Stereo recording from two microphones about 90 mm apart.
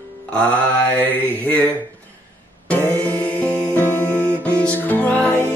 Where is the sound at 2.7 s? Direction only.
15° left (ahead or behind).